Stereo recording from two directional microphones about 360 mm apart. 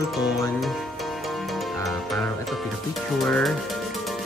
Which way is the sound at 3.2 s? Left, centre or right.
Centre.